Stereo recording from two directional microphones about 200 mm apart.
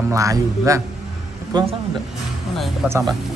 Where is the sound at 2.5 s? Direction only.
Centre (ahead or behind).